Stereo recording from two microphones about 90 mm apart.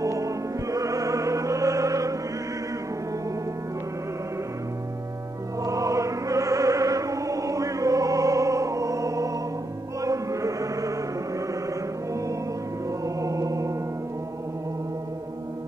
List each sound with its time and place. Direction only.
0.0 s music: 40° right (ahead or behind)
5.6 s music: 40° right (ahead or behind)
13.0 s music: 40° right (ahead or behind)